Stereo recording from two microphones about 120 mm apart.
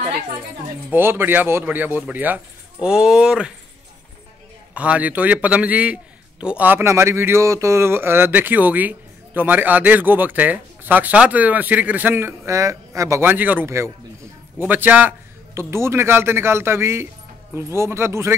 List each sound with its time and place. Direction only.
0.8 s speech: 15° right (ahead or behind)
4.7 s a man's voice: 10° right (ahead or behind)